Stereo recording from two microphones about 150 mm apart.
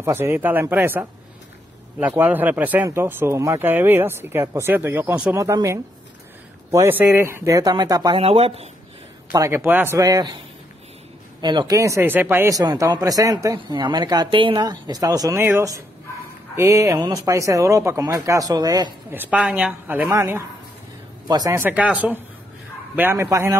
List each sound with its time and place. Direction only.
0.0 s speech: 15° right (ahead or behind)
8.2 s speech: 40° right (ahead or behind)
9.3 s speech: 20° right (ahead or behind)
9.9 s speech: 25° right (ahead or behind)
11.4 s speech: 30° right (ahead or behind)
19.0 s speech: 10° right (ahead or behind)
20.1 s speech: 20° right (ahead or behind)